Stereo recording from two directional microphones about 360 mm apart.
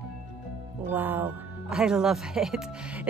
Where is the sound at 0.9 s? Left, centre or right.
Centre.